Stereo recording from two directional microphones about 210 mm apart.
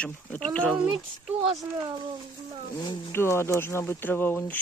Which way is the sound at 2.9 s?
10° left (ahead or behind).